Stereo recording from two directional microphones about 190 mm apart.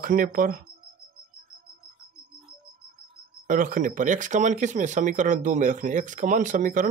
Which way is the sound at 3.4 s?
45° right (ahead or behind).